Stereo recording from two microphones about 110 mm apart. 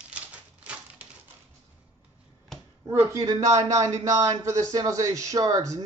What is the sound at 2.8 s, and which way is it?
Speech, 25° right (ahead or behind).